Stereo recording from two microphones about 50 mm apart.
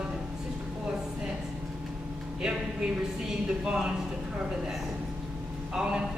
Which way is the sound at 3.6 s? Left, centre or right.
Centre.